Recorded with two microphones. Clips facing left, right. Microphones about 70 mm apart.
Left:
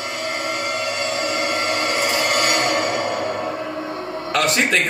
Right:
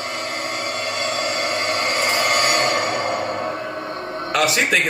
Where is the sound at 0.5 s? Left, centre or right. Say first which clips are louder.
Left 1 dB; right.